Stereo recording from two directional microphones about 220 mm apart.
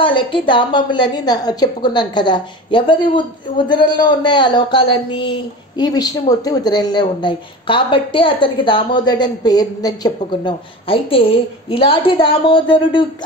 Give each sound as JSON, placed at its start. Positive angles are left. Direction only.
{"t": 0.0, "sound": "a woman's voice", "side_deg": 20}